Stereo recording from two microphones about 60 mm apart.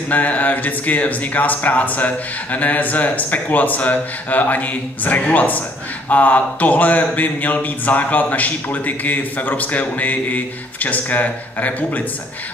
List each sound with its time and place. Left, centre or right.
0.1 s speech: left